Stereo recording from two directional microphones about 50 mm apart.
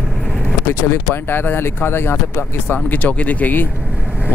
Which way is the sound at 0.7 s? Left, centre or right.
Left.